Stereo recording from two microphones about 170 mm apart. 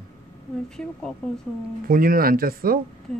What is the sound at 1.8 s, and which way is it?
Speech, 55° right (ahead or behind).